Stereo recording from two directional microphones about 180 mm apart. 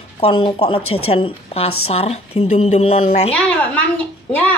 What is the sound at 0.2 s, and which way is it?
A woman's voice, 30° left (ahead or behind).